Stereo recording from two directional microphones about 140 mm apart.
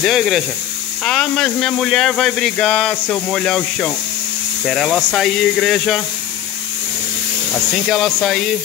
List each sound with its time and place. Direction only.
0.0 s speech: centre (ahead or behind)
7.5 s speech: centre (ahead or behind)